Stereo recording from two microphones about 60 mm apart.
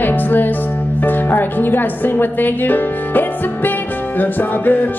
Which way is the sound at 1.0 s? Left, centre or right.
Left.